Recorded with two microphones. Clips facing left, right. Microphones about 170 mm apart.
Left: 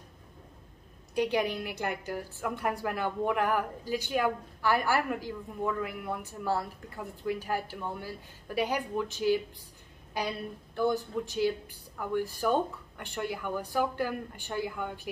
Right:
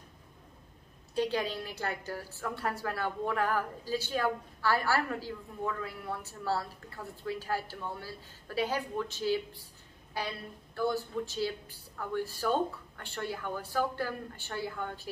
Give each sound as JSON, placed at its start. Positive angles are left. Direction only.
{"t": 1.1, "sound": "a woman's voice", "side_deg": 15}